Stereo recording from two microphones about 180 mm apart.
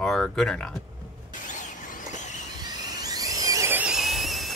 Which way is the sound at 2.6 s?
20° right (ahead or behind).